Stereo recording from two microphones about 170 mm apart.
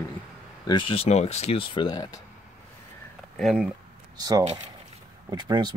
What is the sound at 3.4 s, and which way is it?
Speech, centre (ahead or behind).